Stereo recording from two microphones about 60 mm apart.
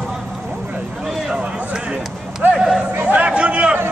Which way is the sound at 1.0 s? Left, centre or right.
Centre.